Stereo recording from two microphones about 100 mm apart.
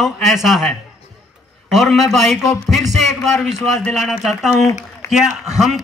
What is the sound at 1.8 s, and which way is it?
Speech, centre (ahead or behind).